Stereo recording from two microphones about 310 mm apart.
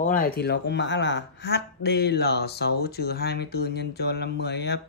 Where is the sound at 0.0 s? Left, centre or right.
Left.